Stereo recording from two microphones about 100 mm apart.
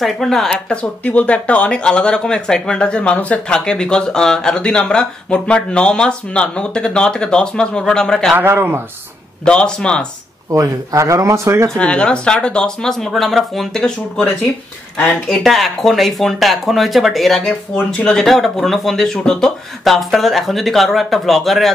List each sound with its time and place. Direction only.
0.0 s speech: 5° left (ahead or behind)
8.4 s a man's voice: 20° right (ahead or behind)
9.4 s speech: 10° left (ahead or behind)
10.5 s speech: 35° right (ahead or behind)
11.7 s speech: 10° left (ahead or behind)